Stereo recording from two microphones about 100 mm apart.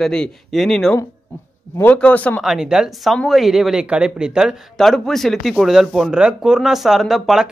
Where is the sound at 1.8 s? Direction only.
15° left (ahead or behind).